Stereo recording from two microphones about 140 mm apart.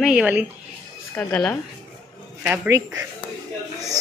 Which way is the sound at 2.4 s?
10° right (ahead or behind).